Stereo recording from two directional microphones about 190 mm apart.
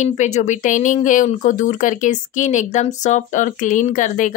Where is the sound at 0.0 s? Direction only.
40° left (ahead or behind).